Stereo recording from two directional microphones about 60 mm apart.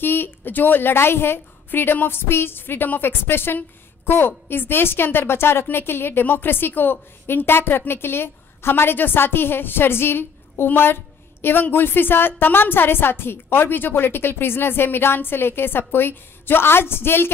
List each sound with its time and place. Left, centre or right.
0.0 s a woman's voice: left